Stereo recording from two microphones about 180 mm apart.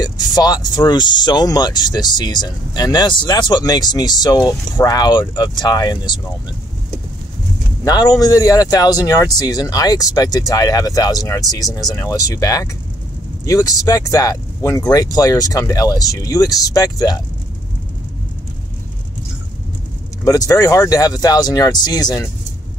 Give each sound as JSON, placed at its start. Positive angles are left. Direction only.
{"t": 0.0, "sound": "speech", "side_deg": 25}
{"t": 7.8, "sound": "speech", "side_deg": 20}
{"t": 20.2, "sound": "speech", "side_deg": 20}